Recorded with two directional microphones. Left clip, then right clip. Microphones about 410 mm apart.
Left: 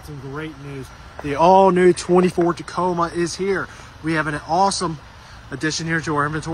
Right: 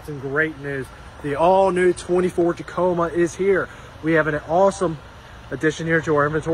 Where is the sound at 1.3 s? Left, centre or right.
Left.